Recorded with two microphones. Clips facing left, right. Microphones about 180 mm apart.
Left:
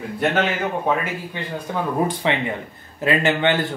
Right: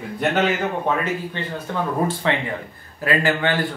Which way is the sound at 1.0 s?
10° left (ahead or behind).